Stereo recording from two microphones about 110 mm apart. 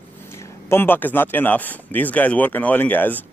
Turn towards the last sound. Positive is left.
turn(degrees=15)  # may be behind; listen again after turning